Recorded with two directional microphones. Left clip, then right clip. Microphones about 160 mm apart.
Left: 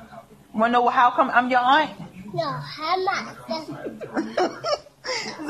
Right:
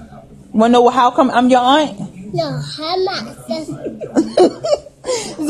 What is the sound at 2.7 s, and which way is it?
Speech, 20° right (ahead or behind).